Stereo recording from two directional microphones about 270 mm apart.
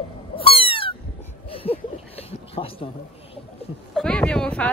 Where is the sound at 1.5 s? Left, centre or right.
Left.